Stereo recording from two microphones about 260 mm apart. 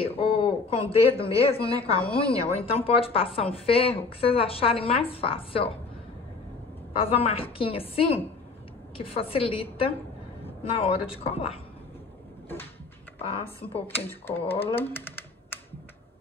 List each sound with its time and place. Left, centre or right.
0.0 s a woman's voice: left
7.0 s a woman's voice: left
13.2 s a woman's voice: left
13.7 s speech: centre
14.8 s typing: centre